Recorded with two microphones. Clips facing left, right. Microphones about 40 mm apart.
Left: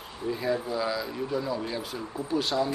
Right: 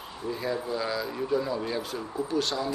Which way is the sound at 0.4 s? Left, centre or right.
Centre.